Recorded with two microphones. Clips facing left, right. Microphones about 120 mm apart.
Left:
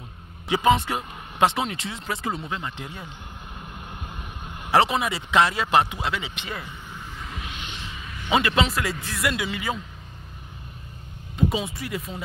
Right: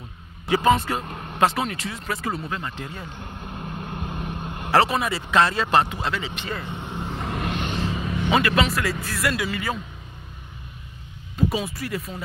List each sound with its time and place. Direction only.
0.5 s speech: 15° left (ahead or behind)
1.0 s vehicle: 50° right (ahead or behind)
1.4 s speech: 20° left (ahead or behind)
3.7 s vehicle: 50° right (ahead or behind)
4.6 s speech: 15° left (ahead or behind)
6.7 s a sound: 60° right (ahead or behind); by 8.1 s 40° right (ahead or behind)
8.3 s speech: 20° left (ahead or behind)
11.3 s speech: 20° left (ahead or behind)